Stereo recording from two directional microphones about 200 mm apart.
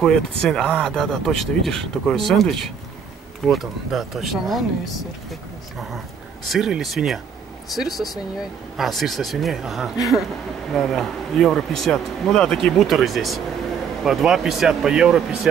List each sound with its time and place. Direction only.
0.0 s speech: 5° left (ahead or behind)
6.4 s speech: centre (ahead or behind)